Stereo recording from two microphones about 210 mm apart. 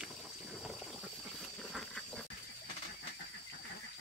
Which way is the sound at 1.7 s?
Centre (ahead or behind).